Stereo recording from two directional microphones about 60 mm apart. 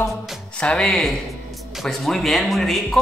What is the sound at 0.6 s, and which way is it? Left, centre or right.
Speech, centre.